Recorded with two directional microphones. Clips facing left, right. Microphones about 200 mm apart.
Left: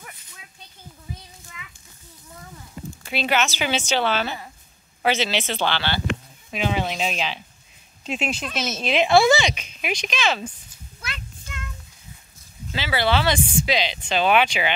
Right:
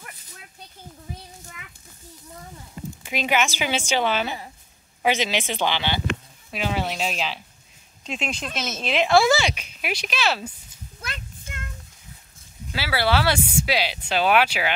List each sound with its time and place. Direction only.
1.4 s child singing: 50° right (ahead or behind)
3.0 s speech: 10° right (ahead or behind)
6.5 s speech: 5° right (ahead or behind)
11.0 s a sound: 45° right (ahead or behind)
12.7 s speech: 10° right (ahead or behind)